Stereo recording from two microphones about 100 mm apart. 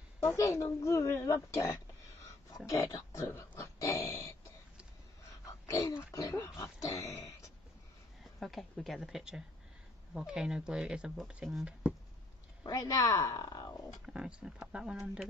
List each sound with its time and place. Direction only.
0.2 s speech: 30° left (ahead or behind)
5.4 s a sound: 35° left (ahead or behind)
8.2 s speech: centre (ahead or behind)
12.6 s speech: 35° left (ahead or behind)
14.0 s speech: 5° right (ahead or behind)